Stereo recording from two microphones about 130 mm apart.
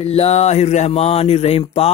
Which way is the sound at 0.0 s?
50° left (ahead or behind).